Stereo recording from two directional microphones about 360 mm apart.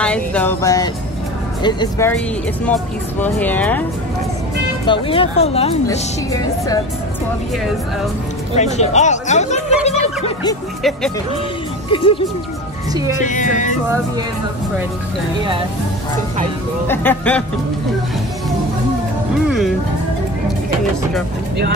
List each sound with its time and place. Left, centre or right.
0.0 s music: centre
1.6 s speech: centre
4.8 s speech: centre
8.5 s speech: centre
9.8 s a sound: centre
10.8 s speech: centre
11.9 s speech: centre
13.2 s speech: left
16.8 s speech: centre